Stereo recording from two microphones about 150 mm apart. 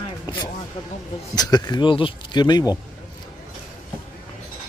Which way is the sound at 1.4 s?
25° left (ahead or behind).